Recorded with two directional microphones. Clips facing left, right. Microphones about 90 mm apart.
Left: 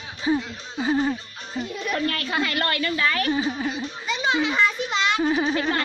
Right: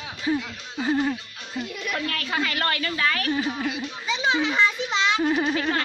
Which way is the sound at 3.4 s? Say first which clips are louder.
Left 1 dB; 30° left (ahead or behind).